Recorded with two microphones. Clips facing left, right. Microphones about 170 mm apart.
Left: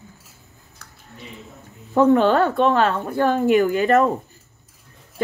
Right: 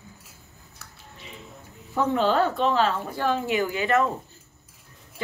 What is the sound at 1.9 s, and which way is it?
Speech, 55° left (ahead or behind).